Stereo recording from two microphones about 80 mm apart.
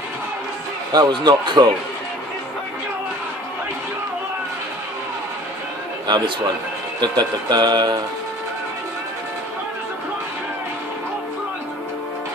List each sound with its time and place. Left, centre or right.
0.9 s speech: right
6.0 s speech: right